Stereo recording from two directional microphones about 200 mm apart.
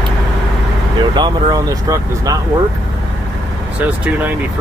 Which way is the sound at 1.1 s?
20° right (ahead or behind).